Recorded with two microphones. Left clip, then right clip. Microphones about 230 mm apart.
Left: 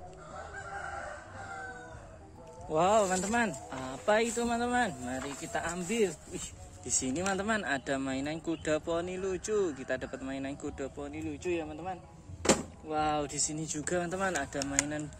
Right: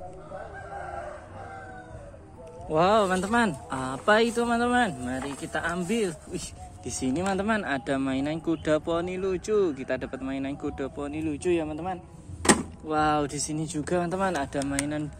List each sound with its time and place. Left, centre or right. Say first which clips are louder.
2.7 s speech: right 5 dB; centre
3.3 s speech: right 6 dB; centre
6.9 s speech: right 4 dB; centre
11.1 s speech: right 9 dB; right
12.8 s speech: right 7 dB; centre